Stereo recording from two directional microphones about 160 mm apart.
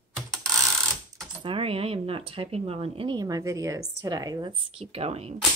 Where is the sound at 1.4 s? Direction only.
35° right (ahead or behind).